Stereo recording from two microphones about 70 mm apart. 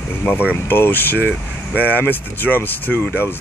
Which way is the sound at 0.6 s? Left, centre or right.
Left.